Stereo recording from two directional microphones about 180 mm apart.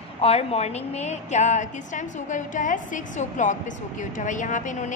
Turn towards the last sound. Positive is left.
turn(degrees=45)  # may be behind; listen again after turning